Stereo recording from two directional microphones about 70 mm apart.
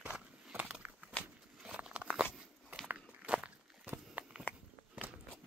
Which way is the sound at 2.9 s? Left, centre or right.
Right.